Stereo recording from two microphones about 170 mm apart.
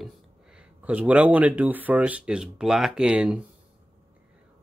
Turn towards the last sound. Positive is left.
turn(degrees=-5)  # may be behind; listen again after turning